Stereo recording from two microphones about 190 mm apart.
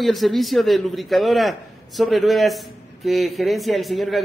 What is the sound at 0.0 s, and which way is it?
Speech, centre (ahead or behind).